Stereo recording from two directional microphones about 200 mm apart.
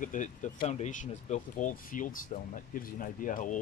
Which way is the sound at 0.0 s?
40° left (ahead or behind).